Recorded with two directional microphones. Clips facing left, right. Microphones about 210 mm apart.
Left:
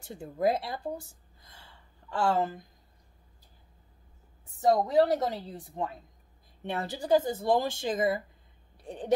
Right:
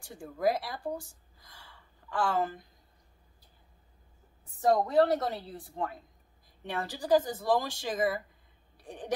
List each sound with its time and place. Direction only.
0.0 s speech: 25° left (ahead or behind)
4.6 s speech: 20° left (ahead or behind)